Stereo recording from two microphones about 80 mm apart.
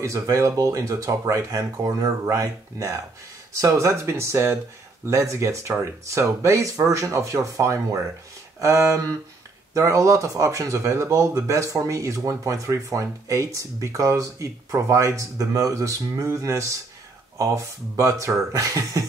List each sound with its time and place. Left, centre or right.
0.0 s speech: right